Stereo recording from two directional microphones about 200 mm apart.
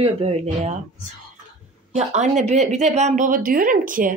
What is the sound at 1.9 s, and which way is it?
Speech, 35° right (ahead or behind).